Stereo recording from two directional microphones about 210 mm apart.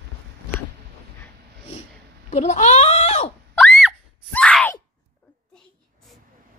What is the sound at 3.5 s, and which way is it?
Screaming, centre (ahead or behind).